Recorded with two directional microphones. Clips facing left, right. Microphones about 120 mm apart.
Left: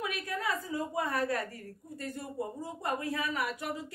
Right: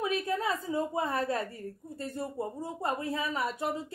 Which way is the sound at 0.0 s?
25° right (ahead or behind).